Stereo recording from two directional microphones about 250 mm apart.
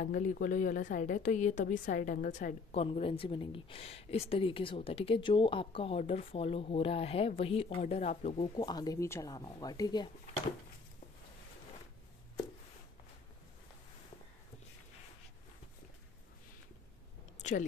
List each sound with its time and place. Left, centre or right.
0.0 s a woman's voice: left
8.5 s speech: centre
17.4 s chewing: left